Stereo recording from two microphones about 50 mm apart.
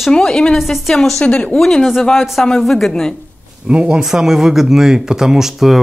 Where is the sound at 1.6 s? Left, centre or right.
Centre.